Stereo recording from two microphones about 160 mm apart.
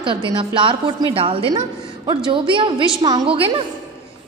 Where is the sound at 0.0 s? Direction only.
30° right (ahead or behind).